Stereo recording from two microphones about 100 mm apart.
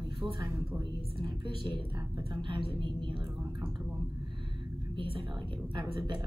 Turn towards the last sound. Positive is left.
turn(degrees=-50)  # may be behind; listen again after turning